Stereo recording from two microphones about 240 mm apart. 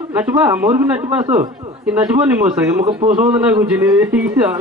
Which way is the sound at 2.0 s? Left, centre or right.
Centre.